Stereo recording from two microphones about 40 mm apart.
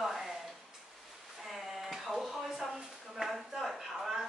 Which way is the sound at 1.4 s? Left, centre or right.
Centre.